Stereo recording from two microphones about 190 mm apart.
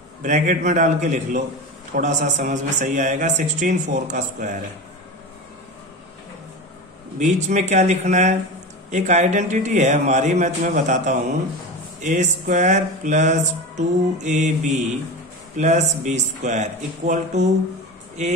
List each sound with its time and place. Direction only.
0.2 s music: 40° right (ahead or behind)
7.2 s music: 40° right (ahead or behind)